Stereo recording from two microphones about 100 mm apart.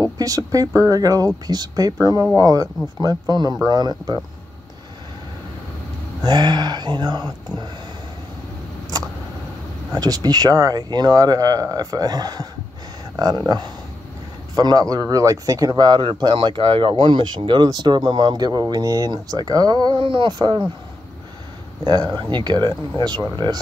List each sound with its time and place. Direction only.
0.2 s speech: 35° right (ahead or behind)
6.2 s speech: 45° right (ahead or behind)
8.9 s vehicle: 35° right (ahead or behind)
9.9 s speech: 40° right (ahead or behind); by 16.9 s 60° right (ahead or behind)
17.0 s speech: 50° right (ahead or behind)
20.0 s speech: 55° right (ahead or behind)
20.3 s speech: 45° right (ahead or behind)
21.8 s speech: 45° right (ahead or behind)